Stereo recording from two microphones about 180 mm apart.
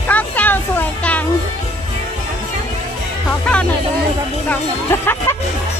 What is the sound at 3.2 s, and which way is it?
Music, 5° left (ahead or behind).